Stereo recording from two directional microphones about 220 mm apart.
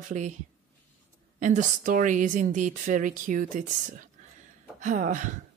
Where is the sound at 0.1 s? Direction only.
35° right (ahead or behind).